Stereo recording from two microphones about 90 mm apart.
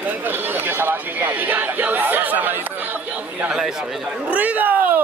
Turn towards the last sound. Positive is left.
turn(degrees=-20)  # may be behind; listen again after turning